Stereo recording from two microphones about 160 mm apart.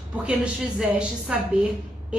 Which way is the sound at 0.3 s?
5° right (ahead or behind).